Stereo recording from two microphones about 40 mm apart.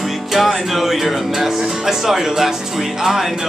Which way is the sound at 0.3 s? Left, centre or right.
Centre.